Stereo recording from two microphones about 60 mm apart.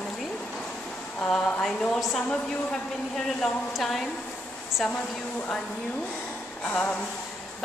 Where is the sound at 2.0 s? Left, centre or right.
Centre.